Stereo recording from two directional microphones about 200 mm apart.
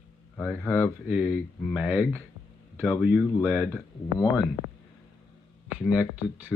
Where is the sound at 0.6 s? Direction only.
10° left (ahead or behind).